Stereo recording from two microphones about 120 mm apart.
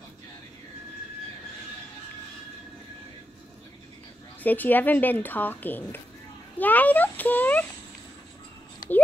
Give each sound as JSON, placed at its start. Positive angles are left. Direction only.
{"t": 4.4, "sound": "a woman's voice", "side_deg": 15}